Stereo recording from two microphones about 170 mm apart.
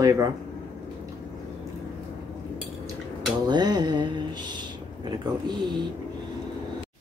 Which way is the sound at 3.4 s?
25° right (ahead or behind).